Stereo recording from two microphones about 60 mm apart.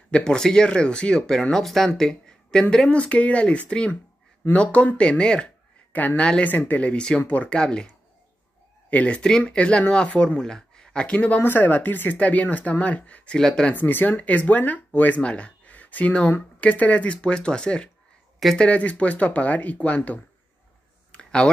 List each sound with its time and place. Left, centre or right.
0.1 s speech: centre
2.0 s a sound: centre
2.7 s speech: centre
5.9 s speech: left
6.2 s speech: centre
6.5 s speech: left
8.9 s speech: centre
13.7 s speech: left
21.1 s a sound: centre